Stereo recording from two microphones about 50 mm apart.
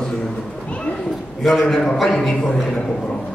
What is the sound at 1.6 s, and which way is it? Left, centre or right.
A man's voice, centre.